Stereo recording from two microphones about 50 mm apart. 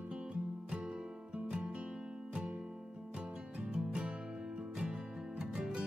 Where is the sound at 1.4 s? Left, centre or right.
Centre.